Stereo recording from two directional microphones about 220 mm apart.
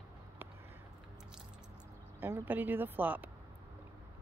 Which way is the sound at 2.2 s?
10° right (ahead or behind).